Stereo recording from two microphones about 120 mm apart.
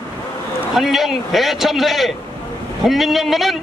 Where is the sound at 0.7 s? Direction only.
Centre (ahead or behind).